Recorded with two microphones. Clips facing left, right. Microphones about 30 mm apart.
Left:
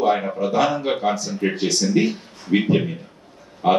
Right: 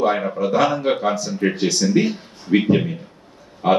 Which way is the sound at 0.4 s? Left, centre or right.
Centre.